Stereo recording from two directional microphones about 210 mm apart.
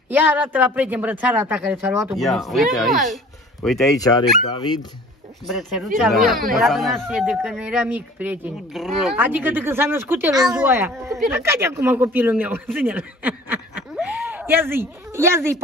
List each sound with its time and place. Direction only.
0.1 s speech: 10° right (ahead or behind)
2.1 s speech: centre (ahead or behind)
3.9 s speech: 15° left (ahead or behind)
5.5 s speech: centre (ahead or behind)